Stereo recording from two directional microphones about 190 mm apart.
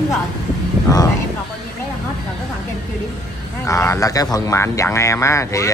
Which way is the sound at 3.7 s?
15° left (ahead or behind).